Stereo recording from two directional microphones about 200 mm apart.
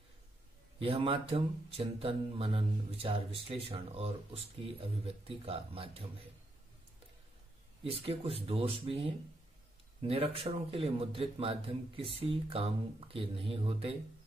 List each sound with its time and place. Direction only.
0.7 s speech: 25° right (ahead or behind)
7.8 s speech: 30° right (ahead or behind)